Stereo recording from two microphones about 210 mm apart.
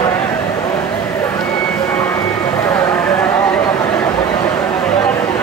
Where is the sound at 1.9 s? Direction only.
5° left (ahead or behind).